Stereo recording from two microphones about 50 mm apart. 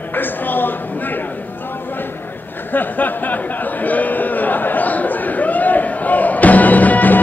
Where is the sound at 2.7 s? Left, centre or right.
Left.